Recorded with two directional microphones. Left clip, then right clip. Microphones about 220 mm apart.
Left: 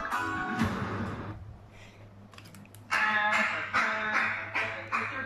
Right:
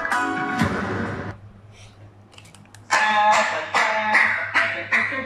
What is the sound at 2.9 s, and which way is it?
Throat clearing, 15° right (ahead or behind).